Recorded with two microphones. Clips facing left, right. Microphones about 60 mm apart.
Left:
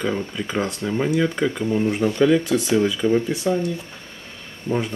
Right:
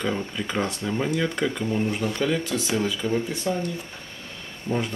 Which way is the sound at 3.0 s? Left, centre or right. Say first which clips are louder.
Left 8 dB; left.